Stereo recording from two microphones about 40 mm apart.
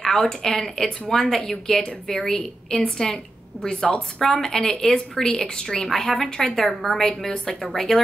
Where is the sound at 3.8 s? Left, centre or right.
Left.